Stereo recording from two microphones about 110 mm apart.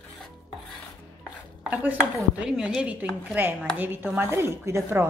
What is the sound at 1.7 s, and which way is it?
Speech, 15° right (ahead or behind).